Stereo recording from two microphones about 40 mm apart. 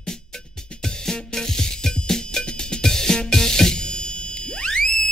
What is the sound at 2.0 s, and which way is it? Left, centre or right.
Music, centre.